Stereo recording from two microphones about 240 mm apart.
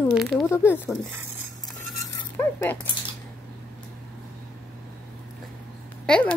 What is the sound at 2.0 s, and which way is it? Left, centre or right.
Chink, centre.